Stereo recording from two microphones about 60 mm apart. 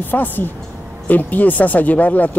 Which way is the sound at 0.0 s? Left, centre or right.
Left.